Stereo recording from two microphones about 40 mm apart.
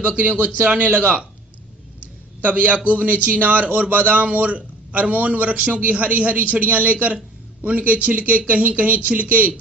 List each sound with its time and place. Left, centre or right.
0.0 s speech: right
2.4 s speech: right